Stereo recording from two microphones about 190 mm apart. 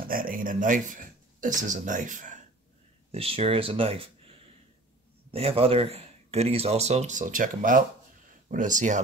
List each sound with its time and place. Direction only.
0.0 s speech: 50° right (ahead or behind)
3.1 s speech: 30° right (ahead or behind)